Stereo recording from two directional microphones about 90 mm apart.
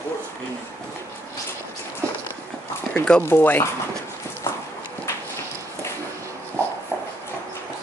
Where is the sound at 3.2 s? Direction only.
25° left (ahead or behind).